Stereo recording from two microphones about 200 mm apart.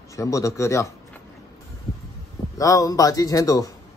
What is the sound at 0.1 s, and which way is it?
Speech, 15° left (ahead or behind).